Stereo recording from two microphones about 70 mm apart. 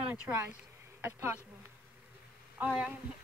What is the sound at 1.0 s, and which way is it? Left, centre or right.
Speech, right.